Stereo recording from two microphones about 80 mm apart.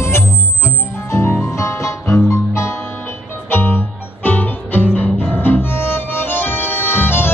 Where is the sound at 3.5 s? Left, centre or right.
Left.